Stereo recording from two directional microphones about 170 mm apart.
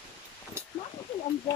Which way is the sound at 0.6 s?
15° right (ahead or behind).